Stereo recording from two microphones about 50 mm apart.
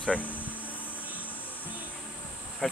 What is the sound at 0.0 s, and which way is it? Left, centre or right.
Air conditioning, left.